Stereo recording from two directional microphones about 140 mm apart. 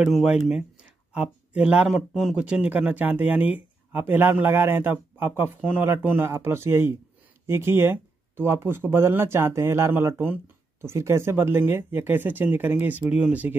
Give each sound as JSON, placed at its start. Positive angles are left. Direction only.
{"t": 0.0, "sound": "speech", "side_deg": -5}